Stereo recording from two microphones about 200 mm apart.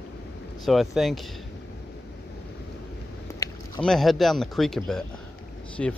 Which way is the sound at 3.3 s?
15° left (ahead or behind).